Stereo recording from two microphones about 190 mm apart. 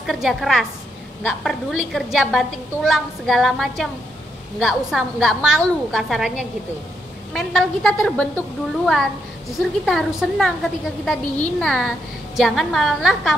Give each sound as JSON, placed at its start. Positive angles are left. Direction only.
{"t": 0.0, "sound": "a woman's voice", "side_deg": 0}